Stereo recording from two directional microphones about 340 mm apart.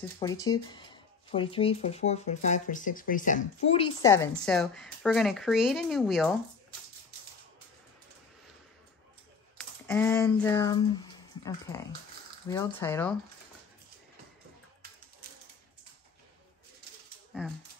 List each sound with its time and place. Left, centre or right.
0.2 s speech: centre
9.6 s speech: centre
15.2 s typewriter: right